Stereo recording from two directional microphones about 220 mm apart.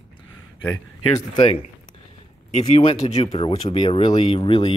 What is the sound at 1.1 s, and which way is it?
Speech, 20° left (ahead or behind).